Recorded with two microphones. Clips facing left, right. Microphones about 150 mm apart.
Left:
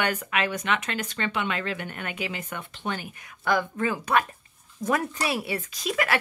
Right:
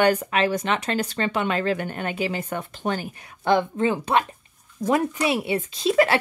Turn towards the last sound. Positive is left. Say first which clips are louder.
# right 8 dB
turn(degrees=-30)  # may be behind; listen again after turning